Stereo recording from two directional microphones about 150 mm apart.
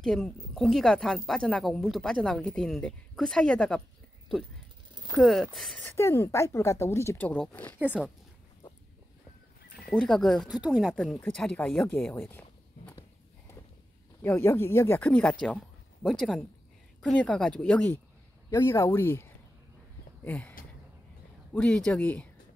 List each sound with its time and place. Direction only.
0.0 s speech: centre (ahead or behind)
5.1 s speech: centre (ahead or behind)
5.9 s speech: 20° left (ahead or behind)
7.8 s speech: 5° right (ahead or behind)
9.8 s speech: centre (ahead or behind)
12.1 s a sound: 15° left (ahead or behind)
14.2 s speech: 20° left (ahead or behind)
20.2 s speech: 10° left (ahead or behind)